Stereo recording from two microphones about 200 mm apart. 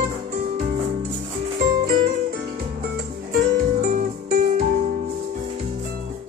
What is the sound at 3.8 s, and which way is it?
Music, 45° right (ahead or behind).